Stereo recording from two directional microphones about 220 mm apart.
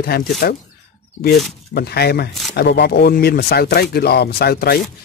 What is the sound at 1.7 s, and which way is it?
Speech, 45° left (ahead or behind).